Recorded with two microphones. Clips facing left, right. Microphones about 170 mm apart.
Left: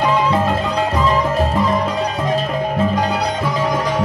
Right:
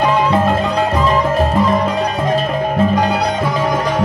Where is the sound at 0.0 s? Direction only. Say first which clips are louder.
Right 2 dB; 60° right (ahead or behind).